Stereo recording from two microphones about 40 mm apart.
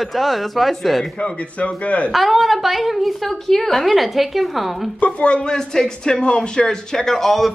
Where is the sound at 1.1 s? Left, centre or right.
Left.